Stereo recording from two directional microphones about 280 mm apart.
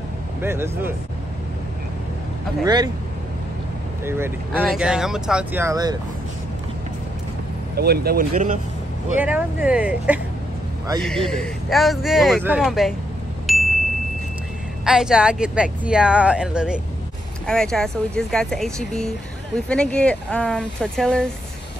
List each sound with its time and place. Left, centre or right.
0.4 s speech: centre
2.6 s speech: centre
4.0 s speech: centre
7.7 s speech: right
9.2 s speech: centre
13.5 s ding: centre
14.9 s speech: centre